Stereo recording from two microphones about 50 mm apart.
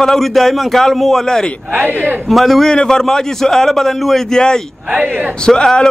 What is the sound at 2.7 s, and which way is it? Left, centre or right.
A man's voice, centre.